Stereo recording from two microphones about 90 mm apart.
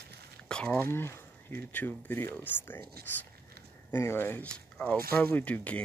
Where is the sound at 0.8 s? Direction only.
25° left (ahead or behind).